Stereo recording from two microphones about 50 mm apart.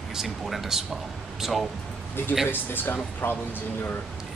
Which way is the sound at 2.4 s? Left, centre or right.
Left.